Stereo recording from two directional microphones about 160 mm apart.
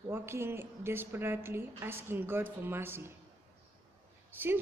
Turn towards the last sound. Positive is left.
turn(degrees=-10)  # may be behind; listen again after turning